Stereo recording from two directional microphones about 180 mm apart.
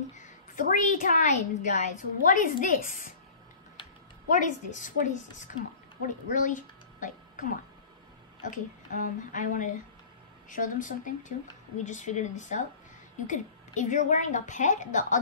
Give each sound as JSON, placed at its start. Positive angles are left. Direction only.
{"t": 0.1, "sound": "a woman's voice", "side_deg": 45}
{"t": 4.3, "sound": "a woman's voice", "side_deg": 45}